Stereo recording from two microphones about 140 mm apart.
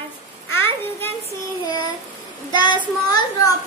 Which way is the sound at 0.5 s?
15° left (ahead or behind).